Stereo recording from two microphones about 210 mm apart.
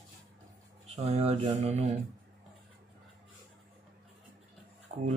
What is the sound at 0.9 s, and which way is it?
Speech, 30° right (ahead or behind).